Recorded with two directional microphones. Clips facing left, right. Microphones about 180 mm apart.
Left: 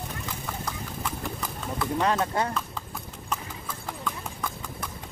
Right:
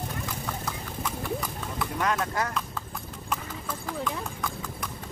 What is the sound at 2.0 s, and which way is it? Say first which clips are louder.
Speech: left 2 dB; 30° left (ahead or behind).